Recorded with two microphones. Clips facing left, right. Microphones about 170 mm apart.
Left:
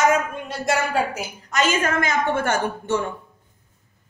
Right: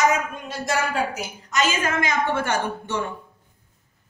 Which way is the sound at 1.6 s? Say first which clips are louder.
Left 3 dB; 50° left (ahead or behind).